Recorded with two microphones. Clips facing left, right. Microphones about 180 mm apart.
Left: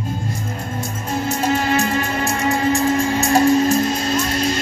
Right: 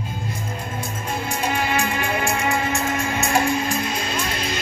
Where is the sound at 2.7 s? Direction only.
35° left (ahead or behind).